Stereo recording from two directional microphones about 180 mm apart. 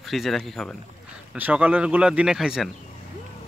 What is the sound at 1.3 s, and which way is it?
Speech, 10° right (ahead or behind).